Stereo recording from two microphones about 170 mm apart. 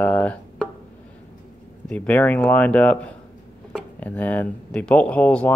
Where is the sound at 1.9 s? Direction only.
10° left (ahead or behind).